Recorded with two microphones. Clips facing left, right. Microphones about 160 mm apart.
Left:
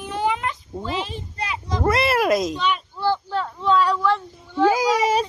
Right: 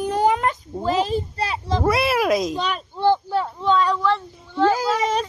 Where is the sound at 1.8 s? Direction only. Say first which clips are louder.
Left 1 dB; centre (ahead or behind).